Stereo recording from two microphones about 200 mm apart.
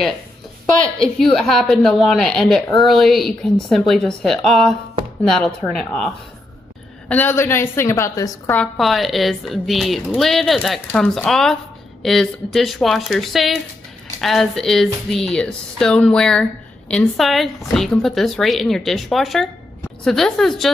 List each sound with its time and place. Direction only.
0.9 s a woman's voice: centre (ahead or behind)
8.7 s speech: centre (ahead or behind)